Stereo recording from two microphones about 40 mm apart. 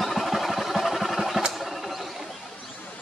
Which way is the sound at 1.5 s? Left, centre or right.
Centre.